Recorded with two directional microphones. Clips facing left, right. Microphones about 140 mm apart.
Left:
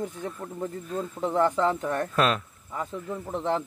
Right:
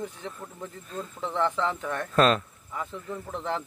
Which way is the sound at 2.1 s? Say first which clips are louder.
Right 4 dB; 5° left (ahead or behind).